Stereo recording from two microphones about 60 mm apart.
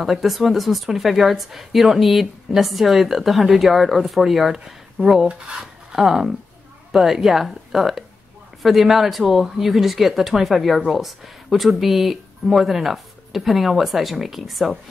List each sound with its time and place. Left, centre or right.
0.0 s speech: centre
5.3 s dishes: centre
5.9 s speech: centre